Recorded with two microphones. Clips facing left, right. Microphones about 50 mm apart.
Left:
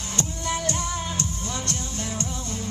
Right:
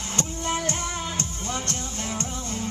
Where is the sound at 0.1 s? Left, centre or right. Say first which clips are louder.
Right 1 dB; right.